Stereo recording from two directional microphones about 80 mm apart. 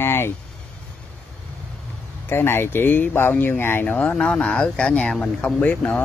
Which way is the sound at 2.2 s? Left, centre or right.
Left.